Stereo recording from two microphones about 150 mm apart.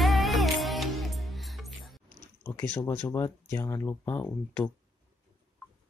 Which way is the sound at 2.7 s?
15° left (ahead or behind).